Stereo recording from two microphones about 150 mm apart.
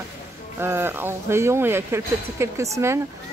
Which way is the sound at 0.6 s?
15° right (ahead or behind).